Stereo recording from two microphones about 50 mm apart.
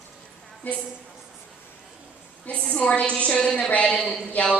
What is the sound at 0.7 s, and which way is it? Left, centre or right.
Speech, left.